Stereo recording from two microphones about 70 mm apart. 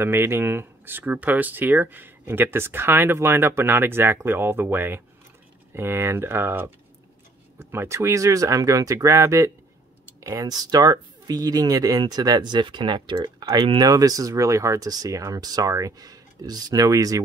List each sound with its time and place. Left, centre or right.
0.0 s speech: right
10.2 s speech: right
13.7 s speech: right
14.9 s speech: right